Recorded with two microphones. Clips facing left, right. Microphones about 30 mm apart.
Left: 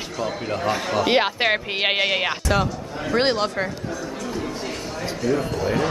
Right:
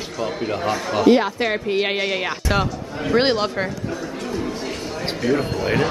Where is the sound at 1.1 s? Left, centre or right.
Left; by 2.4 s centre.